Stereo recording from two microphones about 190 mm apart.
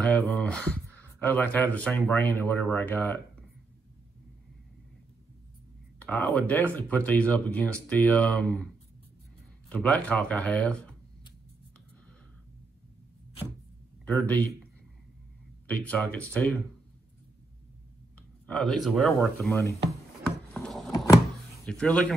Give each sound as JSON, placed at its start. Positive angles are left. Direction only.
{"t": 0.0, "sound": "speech", "side_deg": 10}
{"t": 5.9, "sound": "speech", "side_deg": 5}
{"t": 9.7, "sound": "speech", "side_deg": 5}
{"t": 14.0, "sound": "speech", "side_deg": 10}
{"t": 15.6, "sound": "speech", "side_deg": 10}
{"t": 18.5, "sound": "speech", "side_deg": 0}
{"t": 20.2, "sound": "wood", "side_deg": 5}
{"t": 20.9, "sound": "a sound", "side_deg": 20}
{"t": 21.6, "sound": "speech", "side_deg": 5}